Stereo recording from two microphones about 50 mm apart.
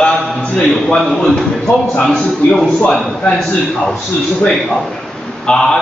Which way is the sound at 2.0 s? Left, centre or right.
Centre.